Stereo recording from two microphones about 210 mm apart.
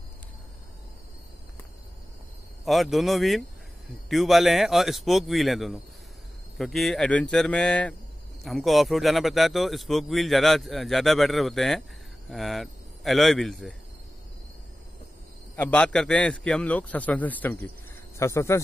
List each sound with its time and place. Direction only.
2.6 s a man's voice: centre (ahead or behind)
15.5 s a man's voice: 5° left (ahead or behind)